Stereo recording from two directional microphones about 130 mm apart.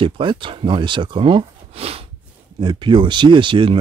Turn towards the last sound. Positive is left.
turn(degrees=-40)  # may be behind; listen again after turning